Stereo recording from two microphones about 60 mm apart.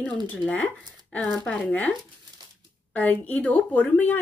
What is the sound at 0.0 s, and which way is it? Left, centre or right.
Speech, left.